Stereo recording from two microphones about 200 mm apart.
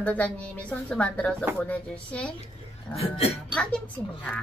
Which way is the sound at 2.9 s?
30° left (ahead or behind).